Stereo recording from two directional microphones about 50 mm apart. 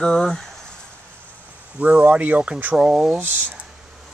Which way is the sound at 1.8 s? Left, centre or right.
Right.